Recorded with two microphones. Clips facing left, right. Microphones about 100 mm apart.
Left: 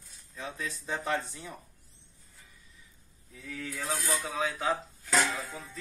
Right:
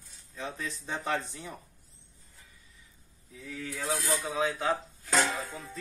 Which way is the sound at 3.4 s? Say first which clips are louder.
Right 1 dB; 10° right (ahead or behind).